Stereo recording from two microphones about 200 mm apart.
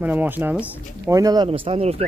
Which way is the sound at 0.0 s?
10° right (ahead or behind).